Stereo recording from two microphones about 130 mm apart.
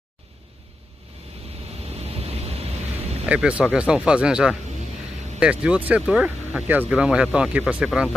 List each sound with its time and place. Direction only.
2.0 s vehicle: 50° right (ahead or behind)
3.3 s speech: 10° right (ahead or behind)